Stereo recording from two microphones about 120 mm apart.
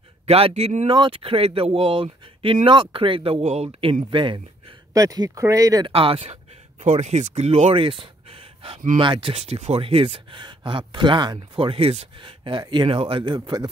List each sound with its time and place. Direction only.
0.3 s speech: 55° right (ahead or behind)
0.8 s speech: 35° right (ahead or behind)
1.1 s speech: 50° right (ahead or behind)
3.9 s speech: 45° right (ahead or behind)
4.9 s speech: 30° right (ahead or behind)
5.9 s speech: 50° right (ahead or behind)
12.2 s speech: 45° right (ahead or behind)